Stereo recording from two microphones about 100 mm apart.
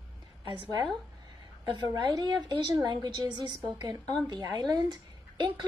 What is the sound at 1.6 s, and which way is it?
A woman's voice, 45° right (ahead or behind).